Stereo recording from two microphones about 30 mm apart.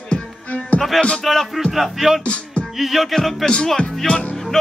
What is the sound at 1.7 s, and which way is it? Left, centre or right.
Speech, centre.